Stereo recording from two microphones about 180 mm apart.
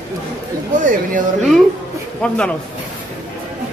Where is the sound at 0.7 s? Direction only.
45° right (ahead or behind).